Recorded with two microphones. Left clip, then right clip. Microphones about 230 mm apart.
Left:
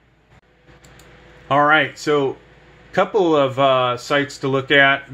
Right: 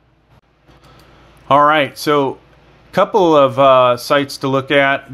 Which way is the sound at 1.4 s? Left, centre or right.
Right.